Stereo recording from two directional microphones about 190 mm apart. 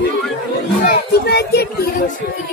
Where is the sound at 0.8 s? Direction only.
50° left (ahead or behind).